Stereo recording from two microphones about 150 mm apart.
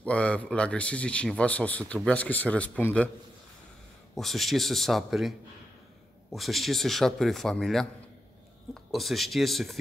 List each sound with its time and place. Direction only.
0.0 s a man's voice: 10° left (ahead or behind)
4.1 s speech: centre (ahead or behind)
6.3 s speech: centre (ahead or behind)